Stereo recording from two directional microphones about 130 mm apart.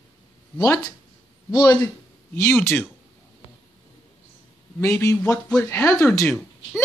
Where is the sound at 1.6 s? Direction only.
15° left (ahead or behind).